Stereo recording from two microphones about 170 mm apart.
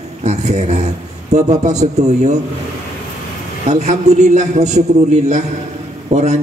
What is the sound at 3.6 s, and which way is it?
A man's voice, 40° right (ahead or behind).